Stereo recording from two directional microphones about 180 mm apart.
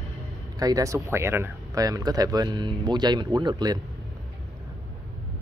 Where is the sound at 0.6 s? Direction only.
20° right (ahead or behind).